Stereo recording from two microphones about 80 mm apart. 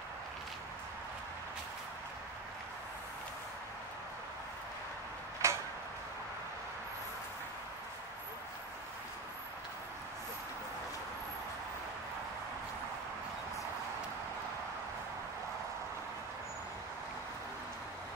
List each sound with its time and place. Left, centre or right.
5.4 s tick-tock: right